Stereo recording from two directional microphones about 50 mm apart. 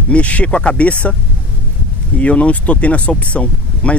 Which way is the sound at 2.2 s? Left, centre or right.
Left.